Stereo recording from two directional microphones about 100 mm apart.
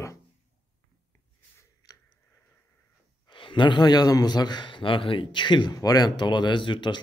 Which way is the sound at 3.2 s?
55° left (ahead or behind).